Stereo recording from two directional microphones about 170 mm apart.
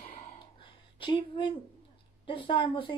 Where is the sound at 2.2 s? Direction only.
30° left (ahead or behind).